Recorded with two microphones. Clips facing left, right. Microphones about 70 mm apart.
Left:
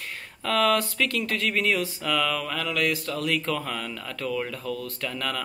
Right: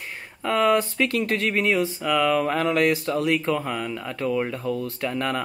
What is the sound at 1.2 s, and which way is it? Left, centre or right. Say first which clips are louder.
Speech: right 3 dB; right.